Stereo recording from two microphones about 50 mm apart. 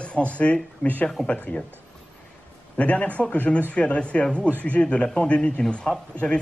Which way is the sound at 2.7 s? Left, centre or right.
Left.